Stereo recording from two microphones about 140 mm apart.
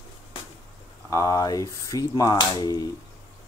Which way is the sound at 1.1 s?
25° left (ahead or behind).